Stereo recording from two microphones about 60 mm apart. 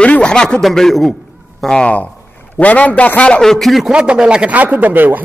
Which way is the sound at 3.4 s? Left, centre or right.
Centre.